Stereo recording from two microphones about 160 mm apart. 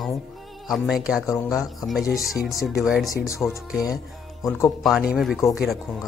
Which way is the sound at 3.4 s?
15° left (ahead or behind).